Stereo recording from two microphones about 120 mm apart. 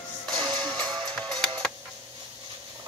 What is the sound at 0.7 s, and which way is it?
Music, 5° left (ahead or behind).